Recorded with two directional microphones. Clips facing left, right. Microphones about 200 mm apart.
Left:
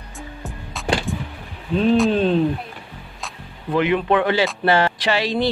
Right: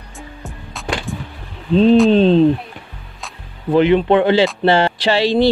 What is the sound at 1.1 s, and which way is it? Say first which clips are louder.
Vehicle: even; centre (ahead or behind).